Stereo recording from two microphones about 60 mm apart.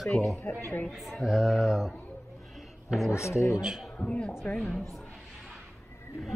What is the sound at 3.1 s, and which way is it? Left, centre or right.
Speech, left.